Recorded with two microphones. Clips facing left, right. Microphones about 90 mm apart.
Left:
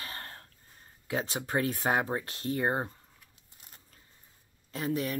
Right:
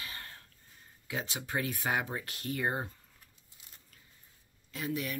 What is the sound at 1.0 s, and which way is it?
Speech, 40° left (ahead or behind).